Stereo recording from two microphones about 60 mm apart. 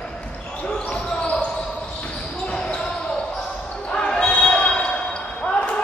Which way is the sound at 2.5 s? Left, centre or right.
Centre.